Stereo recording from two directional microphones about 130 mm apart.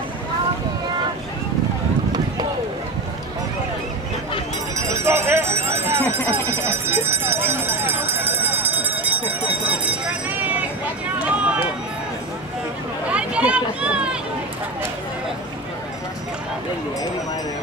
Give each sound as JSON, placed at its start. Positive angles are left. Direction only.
{"t": 4.7, "sound": "jingle bell", "side_deg": -20}
{"t": 11.1, "sound": "run", "side_deg": -10}
{"t": 13.1, "sound": "a sound", "side_deg": -10}